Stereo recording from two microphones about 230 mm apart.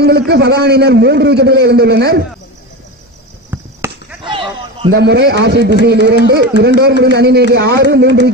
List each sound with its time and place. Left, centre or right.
0.0 s a man's voice: right
4.2 s a sound: right
4.9 s a man's voice: right